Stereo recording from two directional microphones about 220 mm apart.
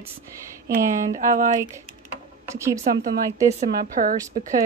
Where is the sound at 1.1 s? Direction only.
35° right (ahead or behind).